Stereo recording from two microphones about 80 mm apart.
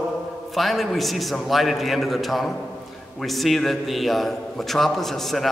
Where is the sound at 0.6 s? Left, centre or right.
Centre.